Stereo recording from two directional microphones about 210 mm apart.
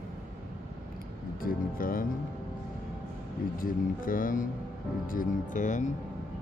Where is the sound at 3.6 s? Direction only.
40° left (ahead or behind).